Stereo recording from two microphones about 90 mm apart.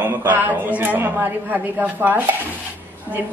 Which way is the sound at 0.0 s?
25° right (ahead or behind).